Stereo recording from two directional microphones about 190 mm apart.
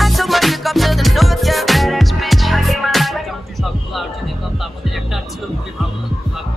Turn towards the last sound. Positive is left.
turn(degrees=0)  # may be behind; listen again after turning